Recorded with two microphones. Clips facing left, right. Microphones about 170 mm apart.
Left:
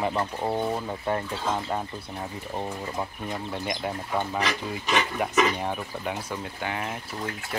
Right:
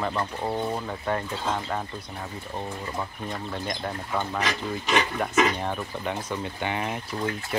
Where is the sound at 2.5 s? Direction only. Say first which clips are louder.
Left 1 dB; 15° left (ahead or behind).